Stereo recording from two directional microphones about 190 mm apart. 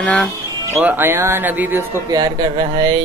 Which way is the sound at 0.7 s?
10° right (ahead or behind).